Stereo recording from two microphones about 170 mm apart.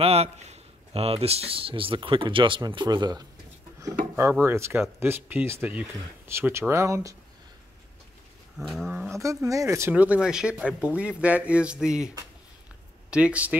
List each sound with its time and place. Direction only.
0.0 s speech: 35° right (ahead or behind); by 7.2 s 20° right (ahead or behind)
8.5 s roaring cats: centre (ahead or behind)
8.8 s speech: 10° right (ahead or behind)
13.1 s speech: 5° right (ahead or behind)